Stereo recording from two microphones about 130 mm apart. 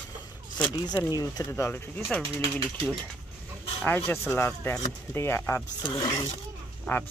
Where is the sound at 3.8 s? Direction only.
15° left (ahead or behind).